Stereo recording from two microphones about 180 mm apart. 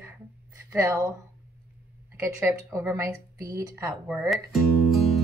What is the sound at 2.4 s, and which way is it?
Speech, 15° right (ahead or behind).